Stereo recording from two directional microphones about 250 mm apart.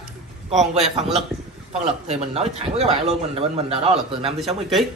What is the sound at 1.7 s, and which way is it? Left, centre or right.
A man's voice, right.